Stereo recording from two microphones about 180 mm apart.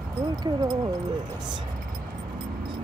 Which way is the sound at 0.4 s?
20° right (ahead or behind).